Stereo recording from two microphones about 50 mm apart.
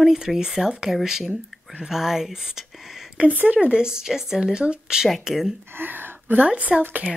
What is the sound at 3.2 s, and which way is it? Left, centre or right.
Speech, right.